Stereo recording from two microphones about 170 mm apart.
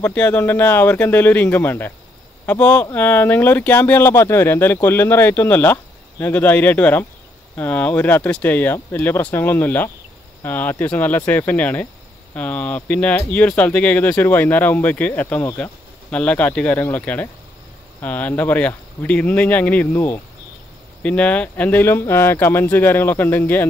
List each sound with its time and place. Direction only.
0.0 s speech: 10° left (ahead or behind)